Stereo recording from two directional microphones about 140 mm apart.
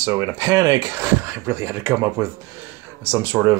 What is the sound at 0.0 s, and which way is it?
Speech, 20° right (ahead or behind).